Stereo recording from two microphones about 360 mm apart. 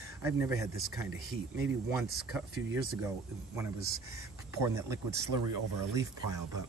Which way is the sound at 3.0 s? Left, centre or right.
Centre.